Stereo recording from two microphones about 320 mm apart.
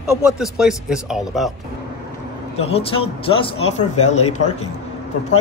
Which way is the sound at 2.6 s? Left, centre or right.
Centre.